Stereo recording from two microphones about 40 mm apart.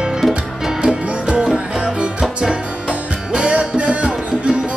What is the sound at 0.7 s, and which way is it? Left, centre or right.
Music, centre.